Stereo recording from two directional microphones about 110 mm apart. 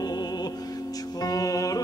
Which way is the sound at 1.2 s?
35° left (ahead or behind).